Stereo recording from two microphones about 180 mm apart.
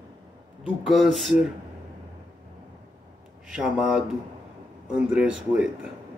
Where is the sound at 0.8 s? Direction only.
Centre (ahead or behind).